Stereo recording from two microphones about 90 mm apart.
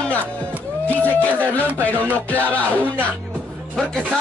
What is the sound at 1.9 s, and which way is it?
Music, 20° left (ahead or behind).